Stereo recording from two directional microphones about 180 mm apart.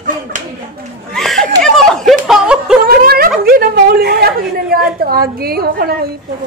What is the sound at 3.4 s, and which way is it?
A woman's voice, 55° right (ahead or behind).